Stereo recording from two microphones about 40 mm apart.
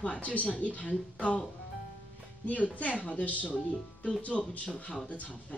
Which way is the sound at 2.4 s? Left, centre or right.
Left.